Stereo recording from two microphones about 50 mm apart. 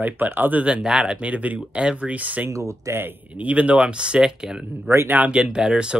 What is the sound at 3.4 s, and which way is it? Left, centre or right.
Speech, right.